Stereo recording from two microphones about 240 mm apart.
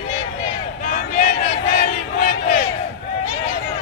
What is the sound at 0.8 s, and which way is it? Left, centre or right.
Crowd, left.